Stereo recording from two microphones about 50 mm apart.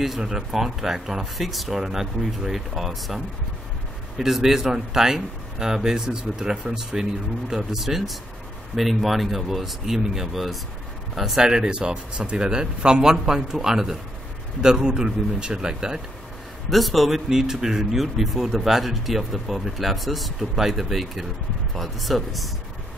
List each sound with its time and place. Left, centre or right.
0.2 s speech: centre
4.2 s a man's voice: centre
16.7 s a man's voice: centre